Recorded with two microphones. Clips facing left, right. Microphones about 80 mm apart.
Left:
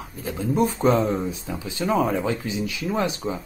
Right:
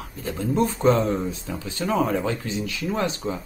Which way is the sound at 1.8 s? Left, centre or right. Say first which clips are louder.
Left 1 dB; centre.